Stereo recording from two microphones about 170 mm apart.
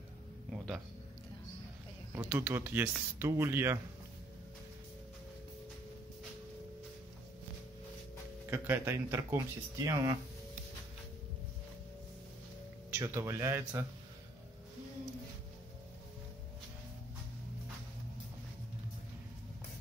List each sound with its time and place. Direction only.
2.1 s speech: 10° right (ahead or behind)
8.5 s speech: 15° right (ahead or behind)
12.9 s speech: 20° right (ahead or behind)